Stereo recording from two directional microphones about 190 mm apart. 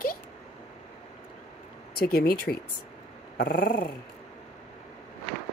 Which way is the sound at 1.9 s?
50° left (ahead or behind).